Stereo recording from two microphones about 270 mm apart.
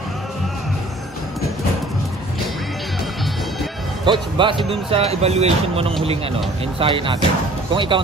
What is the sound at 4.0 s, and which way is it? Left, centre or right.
Speech, centre.